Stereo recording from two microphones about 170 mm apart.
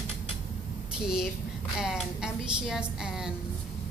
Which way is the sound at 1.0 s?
5° right (ahead or behind).